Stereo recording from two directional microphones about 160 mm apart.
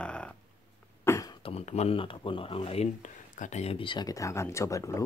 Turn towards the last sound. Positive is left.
turn(degrees=20)  # may be behind; listen again after turning